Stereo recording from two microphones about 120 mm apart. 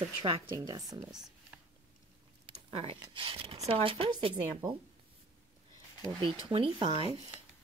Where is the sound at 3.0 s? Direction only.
45° right (ahead or behind).